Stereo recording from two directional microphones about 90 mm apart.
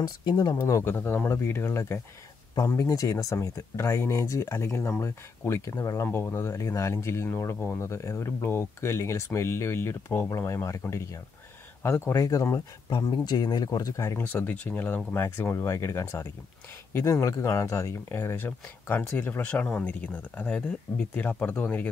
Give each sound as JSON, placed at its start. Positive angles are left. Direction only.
{"t": 0.0, "sound": "speech", "side_deg": 50}
{"t": 0.6, "sound": "speech", "side_deg": 30}
{"t": 2.7, "sound": "speech", "side_deg": 40}
{"t": 14.2, "sound": "speech", "side_deg": 20}
{"t": 18.3, "sound": "speech", "side_deg": 20}